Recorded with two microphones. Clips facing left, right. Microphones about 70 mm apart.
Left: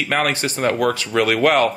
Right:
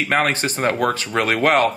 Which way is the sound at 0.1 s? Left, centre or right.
Right.